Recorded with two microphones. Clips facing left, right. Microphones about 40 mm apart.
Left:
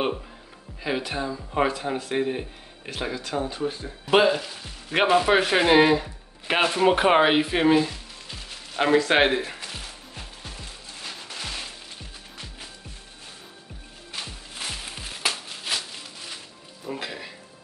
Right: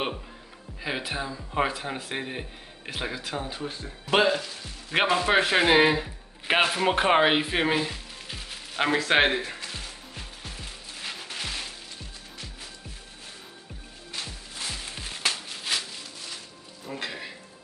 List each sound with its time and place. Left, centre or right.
0.8 s speech: centre
4.0 s speech: centre
5.3 s speech: centre
6.4 s music: centre
11.0 s music: centre
14.1 s music: centre
15.0 s music: centre
16.8 s music: centre